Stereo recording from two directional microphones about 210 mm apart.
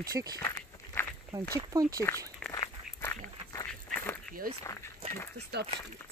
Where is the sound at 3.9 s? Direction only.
10° left (ahead or behind).